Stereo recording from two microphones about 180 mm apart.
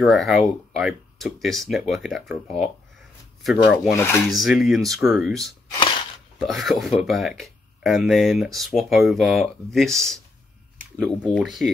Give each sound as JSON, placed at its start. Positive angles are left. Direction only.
{"t": 0.0, "sound": "speech", "side_deg": 0}
{"t": 3.9, "sound": "speech", "side_deg": 10}
{"t": 4.3, "sound": "speech", "side_deg": 0}
{"t": 5.7, "sound": "a sound", "side_deg": 25}
{"t": 6.4, "sound": "speech", "side_deg": 0}